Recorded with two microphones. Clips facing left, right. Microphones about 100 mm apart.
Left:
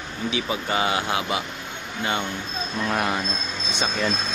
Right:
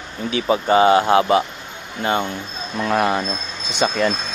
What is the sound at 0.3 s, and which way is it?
Speech, 40° right (ahead or behind).